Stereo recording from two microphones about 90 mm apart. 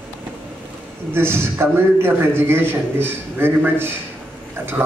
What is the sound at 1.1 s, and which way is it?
A man's voice, 25° right (ahead or behind).